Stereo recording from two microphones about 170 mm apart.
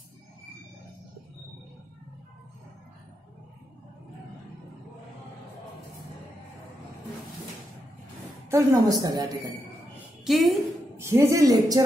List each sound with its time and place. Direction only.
8.5 s a woman's voice: 20° right (ahead or behind)
10.2 s a sound: centre (ahead or behind)
11.0 s speech: 15° right (ahead or behind)